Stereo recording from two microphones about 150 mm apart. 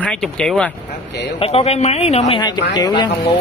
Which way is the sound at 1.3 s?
40° left (ahead or behind).